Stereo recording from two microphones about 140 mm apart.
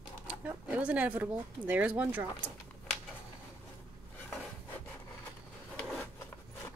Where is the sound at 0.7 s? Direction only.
10° right (ahead or behind).